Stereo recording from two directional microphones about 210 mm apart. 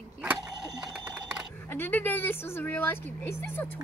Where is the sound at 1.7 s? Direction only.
10° left (ahead or behind).